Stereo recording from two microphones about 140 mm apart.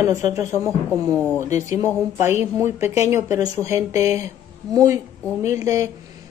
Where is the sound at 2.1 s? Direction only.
15° right (ahead or behind).